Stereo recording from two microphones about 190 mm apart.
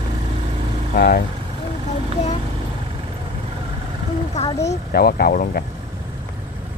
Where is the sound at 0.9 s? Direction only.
55° left (ahead or behind).